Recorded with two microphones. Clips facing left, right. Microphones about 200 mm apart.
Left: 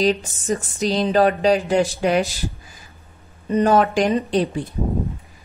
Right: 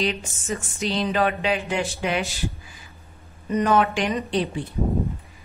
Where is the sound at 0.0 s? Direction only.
40° left (ahead or behind).